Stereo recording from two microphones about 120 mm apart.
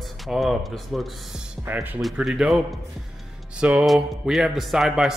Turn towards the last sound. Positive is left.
turn(degrees=0)  # may be behind; listen again after turning